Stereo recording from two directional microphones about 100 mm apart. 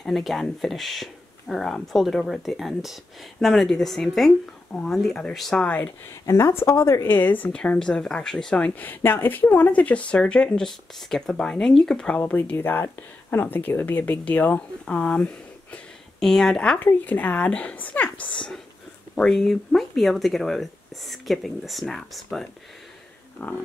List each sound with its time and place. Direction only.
0.0 s a woman's voice: centre (ahead or behind)
6.2 s a woman's voice: 30° left (ahead or behind); by 16.8 s 5° left (ahead or behind)
16.8 s a woman's voice: 15° left (ahead or behind)
23.4 s a woman's voice: 15° left (ahead or behind)